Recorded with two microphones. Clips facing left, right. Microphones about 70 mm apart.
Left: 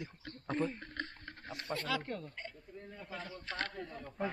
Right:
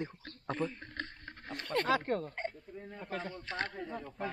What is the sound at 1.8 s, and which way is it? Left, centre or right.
Speech, right.